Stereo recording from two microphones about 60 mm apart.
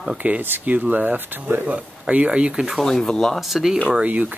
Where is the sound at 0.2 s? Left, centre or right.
Right.